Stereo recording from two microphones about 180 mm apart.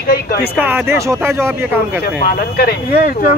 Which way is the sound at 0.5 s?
10° right (ahead or behind).